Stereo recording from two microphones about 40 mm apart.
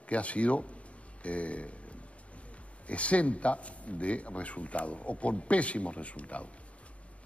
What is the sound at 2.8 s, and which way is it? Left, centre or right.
Speech, left.